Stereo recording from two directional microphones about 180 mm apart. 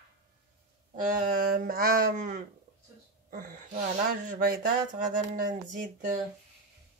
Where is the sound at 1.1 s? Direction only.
55° right (ahead or behind).